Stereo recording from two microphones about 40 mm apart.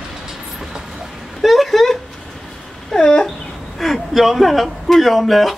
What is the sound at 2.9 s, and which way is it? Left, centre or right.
Dog, centre.